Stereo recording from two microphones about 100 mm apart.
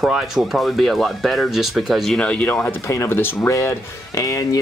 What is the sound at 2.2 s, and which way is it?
Speech, 15° left (ahead or behind).